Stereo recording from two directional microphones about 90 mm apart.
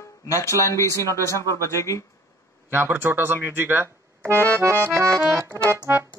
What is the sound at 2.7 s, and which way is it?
Speech, 25° right (ahead or behind).